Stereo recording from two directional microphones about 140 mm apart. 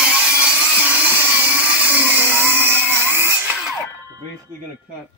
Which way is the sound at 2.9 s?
15° right (ahead or behind).